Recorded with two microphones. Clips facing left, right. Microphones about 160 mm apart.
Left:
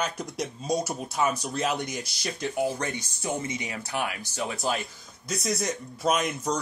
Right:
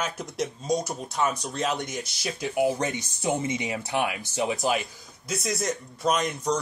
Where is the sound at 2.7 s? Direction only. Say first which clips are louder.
Right 3 dB; 20° right (ahead or behind).